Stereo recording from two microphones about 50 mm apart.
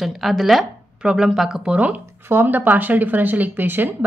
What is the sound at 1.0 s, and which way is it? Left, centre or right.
Speech, centre.